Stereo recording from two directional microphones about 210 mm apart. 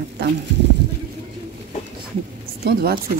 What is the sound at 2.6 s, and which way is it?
Speech, 45° right (ahead or behind).